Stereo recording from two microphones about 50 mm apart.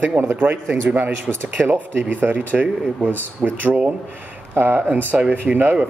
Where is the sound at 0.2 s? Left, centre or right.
Right.